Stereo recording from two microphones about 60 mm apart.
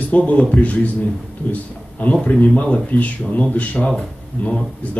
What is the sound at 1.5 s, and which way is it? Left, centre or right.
A man's voice, left.